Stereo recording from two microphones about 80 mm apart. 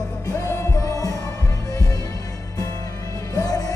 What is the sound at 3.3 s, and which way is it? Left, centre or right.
Music, left.